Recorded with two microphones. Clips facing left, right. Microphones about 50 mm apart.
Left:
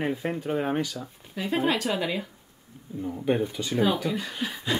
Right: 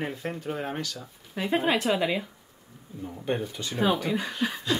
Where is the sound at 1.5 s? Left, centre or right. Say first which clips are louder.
Right 1 dB; centre.